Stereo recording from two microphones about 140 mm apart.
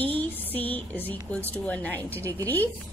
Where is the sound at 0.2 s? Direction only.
10° left (ahead or behind).